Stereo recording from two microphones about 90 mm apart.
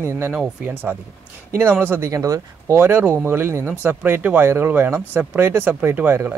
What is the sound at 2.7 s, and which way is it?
Speech, 25° right (ahead or behind).